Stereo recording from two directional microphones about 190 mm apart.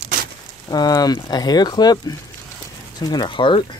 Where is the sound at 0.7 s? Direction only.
20° left (ahead or behind).